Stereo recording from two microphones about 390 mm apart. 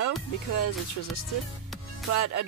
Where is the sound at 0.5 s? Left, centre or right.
Left.